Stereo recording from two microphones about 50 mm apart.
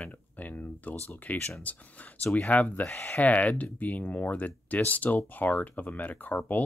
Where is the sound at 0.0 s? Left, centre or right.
Left.